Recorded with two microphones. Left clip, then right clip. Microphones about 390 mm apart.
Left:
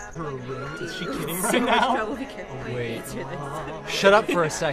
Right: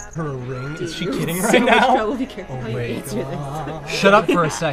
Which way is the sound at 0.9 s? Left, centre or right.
Right.